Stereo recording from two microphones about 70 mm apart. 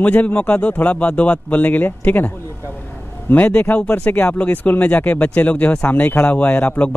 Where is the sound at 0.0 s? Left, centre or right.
Left.